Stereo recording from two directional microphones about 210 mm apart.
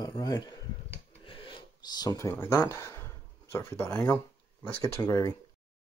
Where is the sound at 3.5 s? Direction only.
10° left (ahead or behind).